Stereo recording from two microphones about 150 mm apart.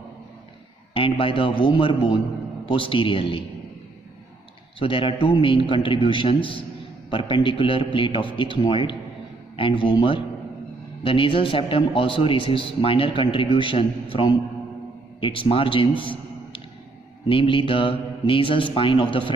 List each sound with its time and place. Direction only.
0.9 s a man's voice: 35° left (ahead or behind)
4.7 s a man's voice: 35° left (ahead or behind)